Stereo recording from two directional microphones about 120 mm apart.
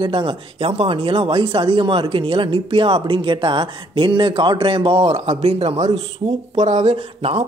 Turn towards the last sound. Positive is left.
turn(degrees=-55)  # may be behind; listen again after turning